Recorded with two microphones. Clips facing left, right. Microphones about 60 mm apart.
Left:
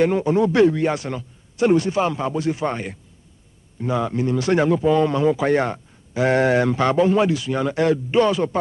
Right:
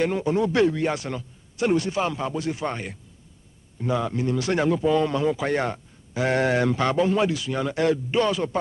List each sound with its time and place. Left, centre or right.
0.0 s a man's voice: left